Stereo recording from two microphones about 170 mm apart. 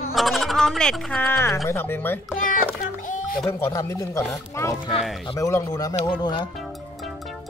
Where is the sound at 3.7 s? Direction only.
20° left (ahead or behind).